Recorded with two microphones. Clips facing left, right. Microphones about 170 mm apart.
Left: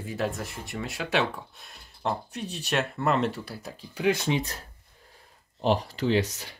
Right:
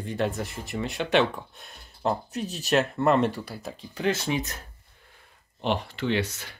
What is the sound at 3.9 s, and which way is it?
Speech, 15° left (ahead or behind).